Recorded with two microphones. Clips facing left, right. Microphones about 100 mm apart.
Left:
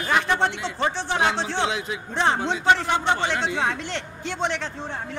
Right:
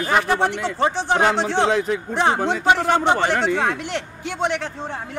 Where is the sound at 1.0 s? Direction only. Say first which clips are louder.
Right 5 dB; 50° right (ahead or behind).